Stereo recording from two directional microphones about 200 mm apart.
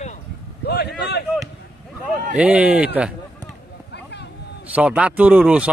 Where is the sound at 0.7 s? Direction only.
55° left (ahead or behind).